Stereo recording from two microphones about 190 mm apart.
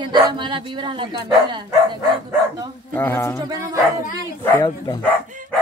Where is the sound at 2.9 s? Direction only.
10° left (ahead or behind).